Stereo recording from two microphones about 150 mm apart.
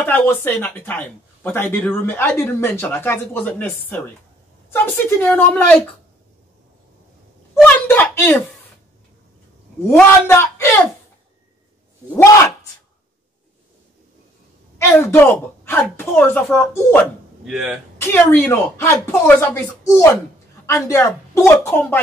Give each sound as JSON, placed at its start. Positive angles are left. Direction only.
{"t": 0.0, "sound": "speech", "side_deg": 15}
{"t": 7.6, "sound": "a woman's voice", "side_deg": 15}
{"t": 10.2, "sound": "speech", "side_deg": 15}
{"t": 14.8, "sound": "speech", "side_deg": 15}
{"t": 17.5, "sound": "speech", "side_deg": -5}
{"t": 17.9, "sound": "speech", "side_deg": 15}